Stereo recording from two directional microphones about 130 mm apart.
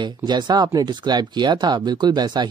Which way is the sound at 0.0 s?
35° right (ahead or behind).